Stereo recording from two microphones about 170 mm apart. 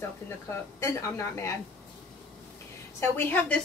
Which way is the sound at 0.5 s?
15° left (ahead or behind).